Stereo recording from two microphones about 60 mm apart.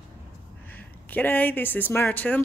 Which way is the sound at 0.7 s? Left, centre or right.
Left.